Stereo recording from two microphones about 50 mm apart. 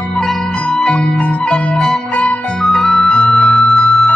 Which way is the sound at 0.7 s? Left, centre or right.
Centre.